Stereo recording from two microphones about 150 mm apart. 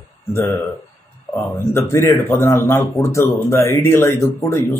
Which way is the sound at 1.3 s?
20° left (ahead or behind).